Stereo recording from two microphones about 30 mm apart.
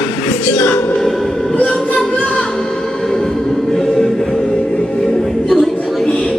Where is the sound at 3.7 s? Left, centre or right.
Centre.